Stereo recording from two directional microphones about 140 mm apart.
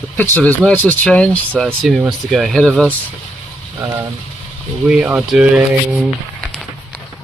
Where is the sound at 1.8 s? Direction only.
Centre (ahead or behind).